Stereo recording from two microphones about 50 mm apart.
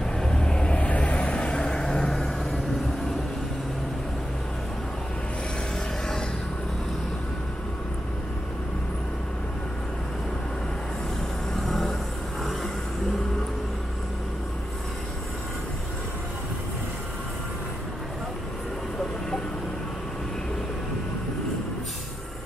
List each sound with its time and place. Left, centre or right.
0.2 s vehicle: centre
0.7 s vehicle: left; by 2.6 s centre
11.6 s vehicle: centre